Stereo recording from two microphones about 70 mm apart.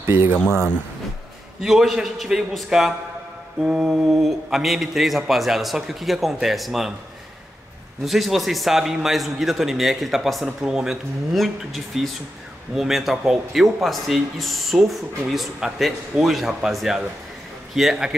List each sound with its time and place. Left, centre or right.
0.0 s speech: right
1.6 s speech: centre
8.0 s speech: centre